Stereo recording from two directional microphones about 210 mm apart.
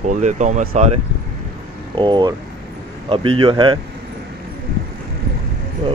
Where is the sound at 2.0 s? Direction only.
20° right (ahead or behind).